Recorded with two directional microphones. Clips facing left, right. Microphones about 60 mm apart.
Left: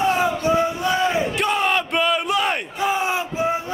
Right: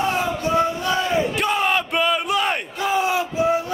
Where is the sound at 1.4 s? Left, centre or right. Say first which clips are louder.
Even; centre.